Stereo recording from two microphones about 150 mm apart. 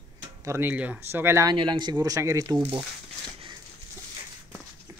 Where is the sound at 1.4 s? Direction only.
35° right (ahead or behind).